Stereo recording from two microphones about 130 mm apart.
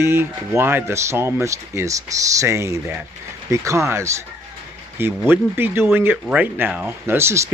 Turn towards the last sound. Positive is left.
turn(degrees=-20)  # may be behind; listen again after turning